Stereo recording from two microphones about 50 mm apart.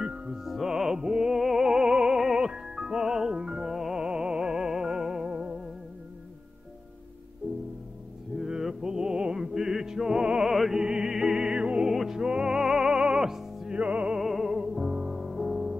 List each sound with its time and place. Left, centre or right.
0.0 s music: centre
0.4 s music: centre
7.4 s music: right
8.4 s mantra: centre
9.5 s music: centre
10.5 s music: centre
10.8 s music: centre
11.9 s music: centre
12.2 s music: centre
13.7 s music: right
14.1 s music: centre
15.1 s music: centre